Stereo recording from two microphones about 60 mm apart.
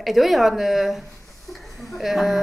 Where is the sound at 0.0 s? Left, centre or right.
Centre.